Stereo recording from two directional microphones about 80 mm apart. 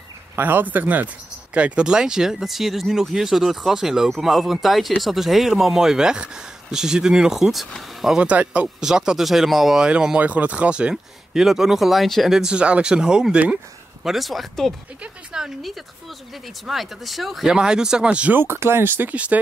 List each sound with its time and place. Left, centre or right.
0.4 s speech: right; by 8.2 s centre
8.2 s speech: centre
9.8 s speech: centre
14.0 s speech: centre
18.3 s speech: right